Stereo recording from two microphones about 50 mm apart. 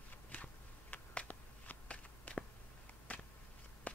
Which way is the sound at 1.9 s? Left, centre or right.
Left.